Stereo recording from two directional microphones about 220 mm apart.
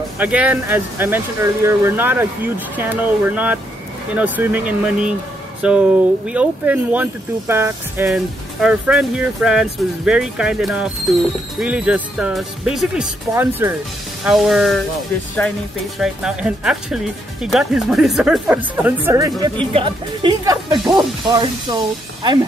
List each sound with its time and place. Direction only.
0.2 s speech: 5° right (ahead or behind)
16.0 s speech: 5° right (ahead or behind)